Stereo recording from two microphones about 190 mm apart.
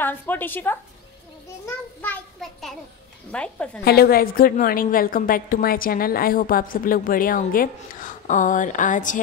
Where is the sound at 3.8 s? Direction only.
55° left (ahead or behind).